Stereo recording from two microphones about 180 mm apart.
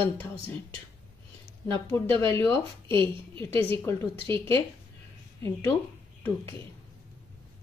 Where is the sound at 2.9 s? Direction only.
25° right (ahead or behind).